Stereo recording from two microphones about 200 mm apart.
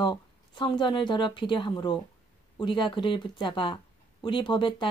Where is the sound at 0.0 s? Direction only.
20° left (ahead or behind).